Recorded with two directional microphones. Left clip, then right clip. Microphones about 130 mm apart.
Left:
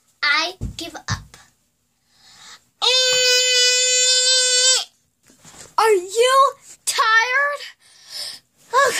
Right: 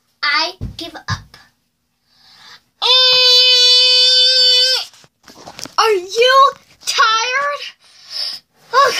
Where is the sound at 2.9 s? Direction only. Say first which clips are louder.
Right 6 dB; 25° left (ahead or behind).